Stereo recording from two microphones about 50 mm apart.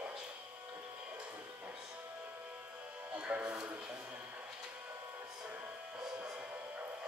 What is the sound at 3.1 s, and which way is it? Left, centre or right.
Music, right.